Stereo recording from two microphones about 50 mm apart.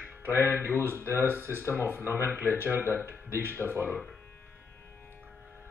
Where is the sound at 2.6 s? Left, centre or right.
Right.